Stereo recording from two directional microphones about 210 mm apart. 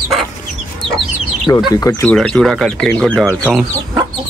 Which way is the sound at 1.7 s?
15° left (ahead or behind).